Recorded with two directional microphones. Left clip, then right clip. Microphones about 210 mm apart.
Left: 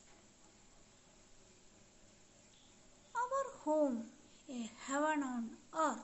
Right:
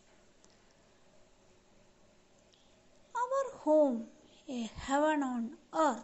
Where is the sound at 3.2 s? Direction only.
25° right (ahead or behind).